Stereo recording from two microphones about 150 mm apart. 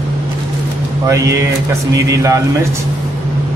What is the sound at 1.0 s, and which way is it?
A man's voice, 20° right (ahead or behind).